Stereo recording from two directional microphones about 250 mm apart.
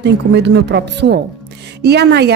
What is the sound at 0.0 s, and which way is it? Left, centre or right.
A woman's voice, right.